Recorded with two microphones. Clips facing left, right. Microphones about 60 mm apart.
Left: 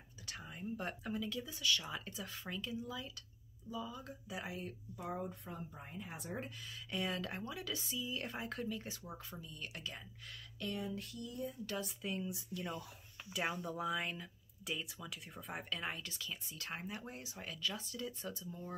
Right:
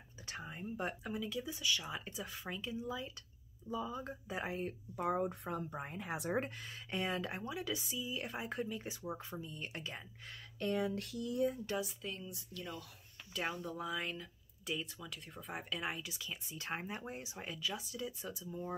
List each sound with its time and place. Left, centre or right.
0.3 s speech: right
3.6 s speech: right
4.9 s speech: right
6.4 s speech: right
7.0 s speech: right
10.8 s a sound: right
11.8 s speech: centre
12.2 s speech: centre
16.4 s speech: right; by 18.6 s centre